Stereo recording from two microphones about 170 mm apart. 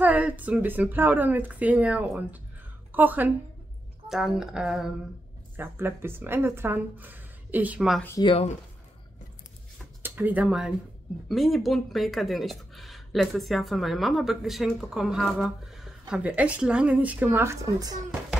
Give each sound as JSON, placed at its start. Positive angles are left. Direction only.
{"t": 0.0, "sound": "a woman's voice", "side_deg": -10}
{"t": 8.2, "sound": "speech", "side_deg": 30}
{"t": 10.0, "sound": "speech", "side_deg": -10}